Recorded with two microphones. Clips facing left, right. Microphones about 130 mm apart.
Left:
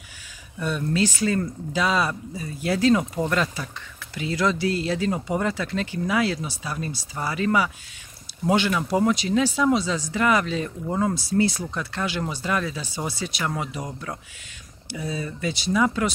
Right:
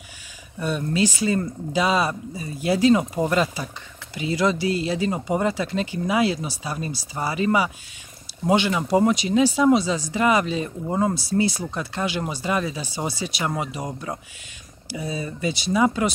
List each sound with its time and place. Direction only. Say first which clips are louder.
0.7 s speech: right 1 dB; 5° right (ahead or behind)
12.8 s speech: right 2 dB; 30° right (ahead or behind)
13.4 s speech: right 2 dB; 10° right (ahead or behind)
14.9 s speech: right 1 dB; 10° right (ahead or behind)